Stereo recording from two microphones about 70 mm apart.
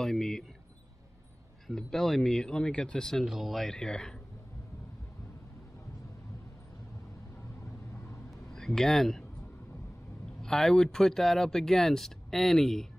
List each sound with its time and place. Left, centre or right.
0.0 s speech: centre
1.7 s speech: centre
3.3 s speech: centre
7.6 s vehicle: left
8.5 s speech: centre
10.4 s speech: centre